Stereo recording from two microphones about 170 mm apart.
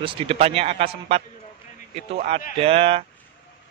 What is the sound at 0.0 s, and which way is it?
A man's voice, 30° right (ahead or behind).